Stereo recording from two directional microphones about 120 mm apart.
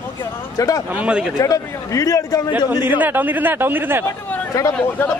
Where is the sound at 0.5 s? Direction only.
30° left (ahead or behind).